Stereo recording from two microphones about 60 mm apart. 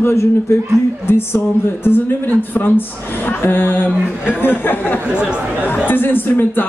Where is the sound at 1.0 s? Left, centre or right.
Left.